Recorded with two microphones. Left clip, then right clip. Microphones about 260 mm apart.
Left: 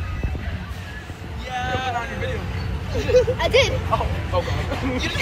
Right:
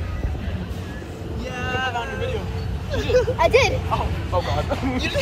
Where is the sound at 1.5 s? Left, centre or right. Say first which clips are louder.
Left 2 dB; centre.